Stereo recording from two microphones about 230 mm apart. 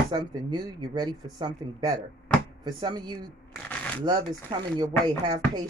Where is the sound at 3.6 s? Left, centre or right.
Centre.